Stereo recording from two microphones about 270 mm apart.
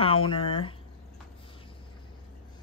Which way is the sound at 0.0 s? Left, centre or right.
Centre.